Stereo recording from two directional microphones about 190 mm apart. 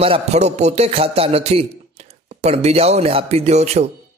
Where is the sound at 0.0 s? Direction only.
35° right (ahead or behind).